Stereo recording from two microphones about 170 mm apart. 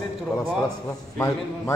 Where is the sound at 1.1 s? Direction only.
15° left (ahead or behind).